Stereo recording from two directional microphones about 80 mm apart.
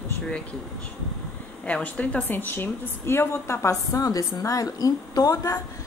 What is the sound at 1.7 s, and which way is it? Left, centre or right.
A woman's voice, centre.